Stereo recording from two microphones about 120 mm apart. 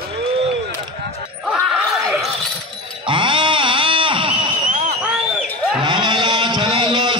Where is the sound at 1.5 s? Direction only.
5° right (ahead or behind).